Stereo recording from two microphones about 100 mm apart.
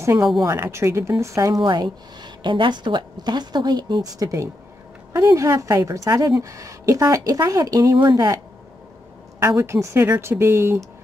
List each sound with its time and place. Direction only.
0.0 s a woman's voice: 30° right (ahead or behind)
1.6 s a woman's voice: 50° right (ahead or behind)
8.0 s a woman's voice: 50° right (ahead or behind)
9.4 s a woman's voice: 25° right (ahead or behind)